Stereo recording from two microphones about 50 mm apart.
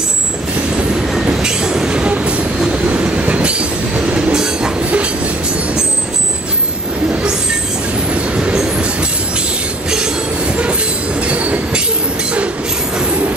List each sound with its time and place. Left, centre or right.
1.4 s train: centre
8.1 s train: right
8.5 s train: centre
9.8 s train: centre
10.6 s train: right